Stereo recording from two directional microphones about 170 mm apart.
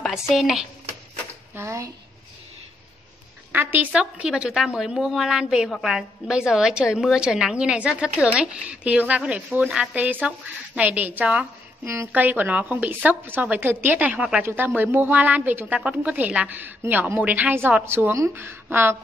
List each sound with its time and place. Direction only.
0.0 s speech: centre (ahead or behind)
1.5 s speech: 15° right (ahead or behind)
3.5 s a woman's voice: 10° right (ahead or behind)